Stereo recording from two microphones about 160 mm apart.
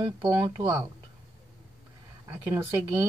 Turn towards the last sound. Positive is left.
turn(degrees=-20)  # may be behind; listen again after turning